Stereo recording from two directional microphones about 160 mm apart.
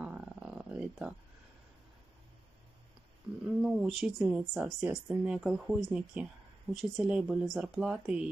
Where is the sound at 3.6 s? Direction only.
5° right (ahead or behind).